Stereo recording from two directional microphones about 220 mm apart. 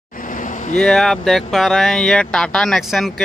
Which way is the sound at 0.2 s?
35° left (ahead or behind).